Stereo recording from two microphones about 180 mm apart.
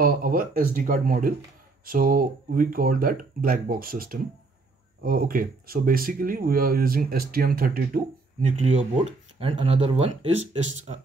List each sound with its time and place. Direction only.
0.0 s speech: 50° right (ahead or behind); by 11.0 s 35° right (ahead or behind)